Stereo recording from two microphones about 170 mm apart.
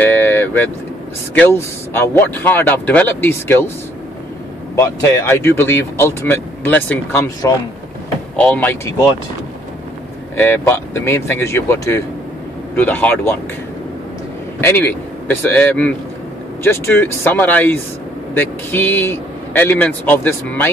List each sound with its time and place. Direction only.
0.0 s vehicle: 10° left (ahead or behind)
1.3 s speech: 10° left (ahead or behind)
4.7 s speech: 15° left (ahead or behind)
10.3 s speech: 15° left (ahead or behind)
14.6 s a man's voice: 10° left (ahead or behind)